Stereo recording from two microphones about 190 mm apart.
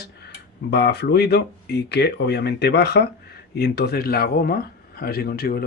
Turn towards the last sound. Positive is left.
turn(degrees=55)  # may be behind; listen again after turning